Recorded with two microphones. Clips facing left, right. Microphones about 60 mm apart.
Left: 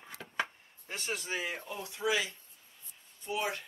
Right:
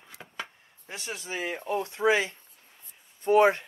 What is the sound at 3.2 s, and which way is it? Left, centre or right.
Speech, right.